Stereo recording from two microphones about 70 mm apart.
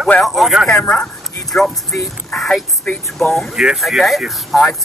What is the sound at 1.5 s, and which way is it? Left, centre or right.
Speech, centre.